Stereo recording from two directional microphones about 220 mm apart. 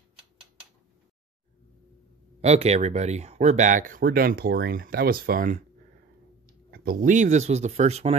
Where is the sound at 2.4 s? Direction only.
30° right (ahead or behind).